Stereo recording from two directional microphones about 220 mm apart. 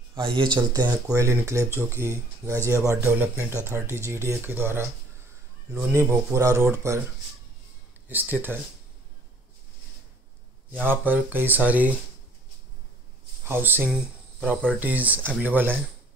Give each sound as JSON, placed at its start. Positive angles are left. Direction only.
{"t": 0.1, "sound": "speech", "side_deg": -20}
{"t": 8.1, "sound": "speech", "side_deg": -10}
{"t": 10.7, "sound": "speech", "side_deg": -10}
{"t": 13.5, "sound": "speech", "side_deg": -10}